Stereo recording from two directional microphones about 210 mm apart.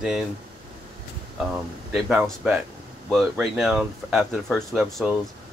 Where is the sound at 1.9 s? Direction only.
5° right (ahead or behind).